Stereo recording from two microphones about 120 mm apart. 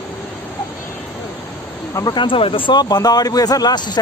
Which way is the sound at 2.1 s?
45° left (ahead or behind).